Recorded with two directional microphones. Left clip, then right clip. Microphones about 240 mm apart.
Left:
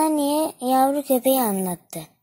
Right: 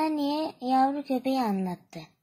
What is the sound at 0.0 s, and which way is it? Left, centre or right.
Speech, left.